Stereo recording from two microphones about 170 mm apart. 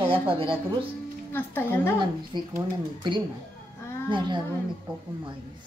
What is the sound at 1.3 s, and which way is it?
Speech, 10° left (ahead or behind).